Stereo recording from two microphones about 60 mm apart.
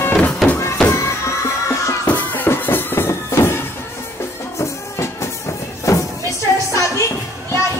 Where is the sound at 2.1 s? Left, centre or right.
Left.